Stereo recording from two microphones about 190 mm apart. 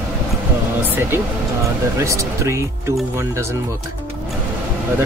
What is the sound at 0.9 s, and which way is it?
Speech, 10° right (ahead or behind).